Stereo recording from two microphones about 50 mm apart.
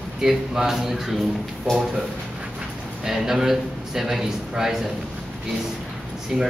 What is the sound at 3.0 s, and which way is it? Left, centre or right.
A man's voice, centre.